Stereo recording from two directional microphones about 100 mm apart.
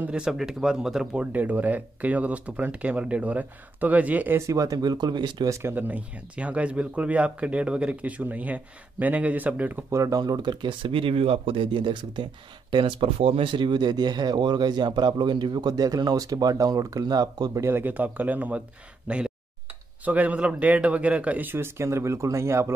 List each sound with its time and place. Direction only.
0.0 s speech: 10° right (ahead or behind)
4.4 s speech: 35° right (ahead or behind)
5.5 s speech: 25° right (ahead or behind)
9.8 s speech: 35° right (ahead or behind)
17.6 s speech: 20° right (ahead or behind)